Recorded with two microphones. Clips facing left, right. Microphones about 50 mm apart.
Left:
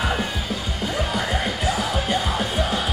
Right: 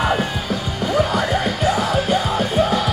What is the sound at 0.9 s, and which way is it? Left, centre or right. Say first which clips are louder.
Music: right 7 dB; centre.